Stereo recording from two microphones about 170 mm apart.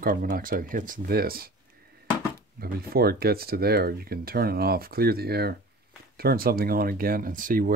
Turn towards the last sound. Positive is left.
turn(degrees=-55)  # may be behind; listen again after turning